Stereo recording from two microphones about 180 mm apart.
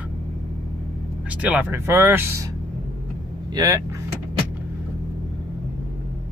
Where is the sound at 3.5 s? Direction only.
20° right (ahead or behind).